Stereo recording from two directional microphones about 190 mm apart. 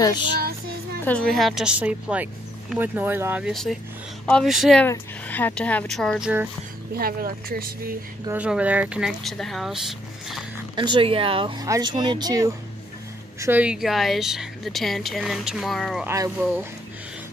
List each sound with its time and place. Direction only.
0.0 s child singing: 20° left (ahead or behind)
1.0 s speech: 5° left (ahead or behind)
4.8 s speech: 10° left (ahead or behind)
7.0 s speech: 50° right (ahead or behind)
8.3 s speech: 5° right (ahead or behind)
10.8 s speech: 25° right (ahead or behind); by 16.1 s centre (ahead or behind)
16.1 s speech: 15° right (ahead or behind)